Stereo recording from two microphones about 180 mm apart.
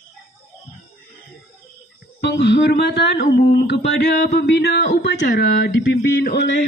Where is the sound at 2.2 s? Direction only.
75° left (ahead or behind).